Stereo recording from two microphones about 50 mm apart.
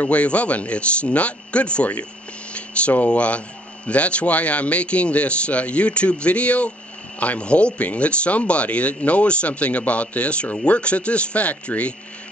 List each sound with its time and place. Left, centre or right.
0.0 s speech: left